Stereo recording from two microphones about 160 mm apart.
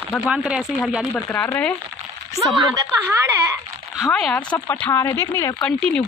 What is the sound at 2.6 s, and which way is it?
Speech, 20° right (ahead or behind).